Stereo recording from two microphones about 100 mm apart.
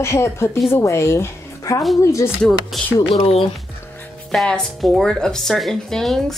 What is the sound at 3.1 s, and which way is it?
Speech, 75° left (ahead or behind).